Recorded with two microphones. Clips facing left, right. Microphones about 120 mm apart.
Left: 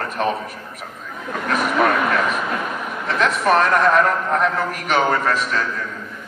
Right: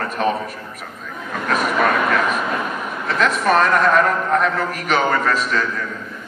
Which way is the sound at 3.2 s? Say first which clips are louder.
Even; 20° left (ahead or behind).